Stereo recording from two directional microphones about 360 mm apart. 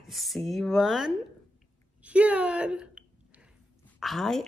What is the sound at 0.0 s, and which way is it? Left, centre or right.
A woman's voice, centre.